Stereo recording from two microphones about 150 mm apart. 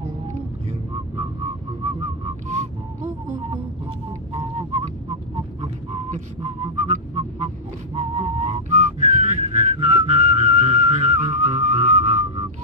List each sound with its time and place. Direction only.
2.4 s whistling: 55° right (ahead or behind)
4.3 s whistling: 40° right (ahead or behind)
6.4 s a sound: 45° right (ahead or behind)
9.4 s whistling: 45° right (ahead or behind)